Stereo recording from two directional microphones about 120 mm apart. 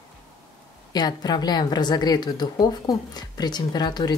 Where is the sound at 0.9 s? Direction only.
35° left (ahead or behind).